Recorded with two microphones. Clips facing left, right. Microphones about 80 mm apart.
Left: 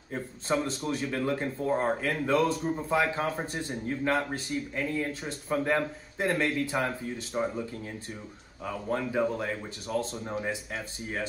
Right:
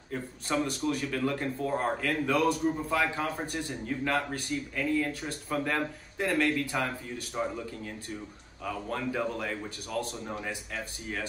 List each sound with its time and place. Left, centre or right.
0.1 s a man's voice: left
8.6 s a man's voice: centre